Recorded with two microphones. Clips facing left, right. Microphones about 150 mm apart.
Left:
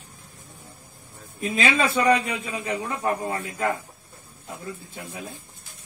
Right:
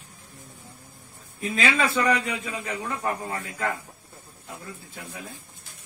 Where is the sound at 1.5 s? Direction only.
20° left (ahead or behind).